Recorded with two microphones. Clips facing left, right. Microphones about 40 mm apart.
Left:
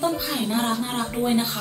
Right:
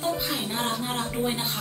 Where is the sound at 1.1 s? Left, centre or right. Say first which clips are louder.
Left 7 dB; centre.